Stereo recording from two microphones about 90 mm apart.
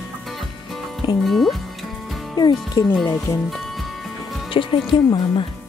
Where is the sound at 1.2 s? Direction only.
Centre (ahead or behind).